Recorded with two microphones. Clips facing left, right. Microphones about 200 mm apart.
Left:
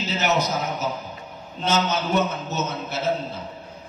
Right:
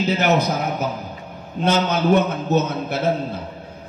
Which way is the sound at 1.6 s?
55° right (ahead or behind).